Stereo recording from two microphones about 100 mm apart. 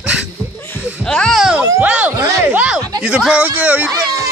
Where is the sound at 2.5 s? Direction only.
10° right (ahead or behind).